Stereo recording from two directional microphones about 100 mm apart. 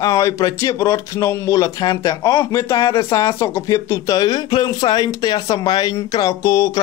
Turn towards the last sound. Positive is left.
turn(degrees=30)  # may be behind; listen again after turning